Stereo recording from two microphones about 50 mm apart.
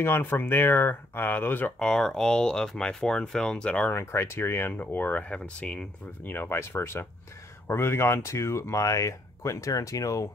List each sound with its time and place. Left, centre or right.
0.0 s speech: left
1.8 s speech: centre
3.9 s speech: left
4.7 s speech: left
5.6 s speech: centre
6.2 s speech: left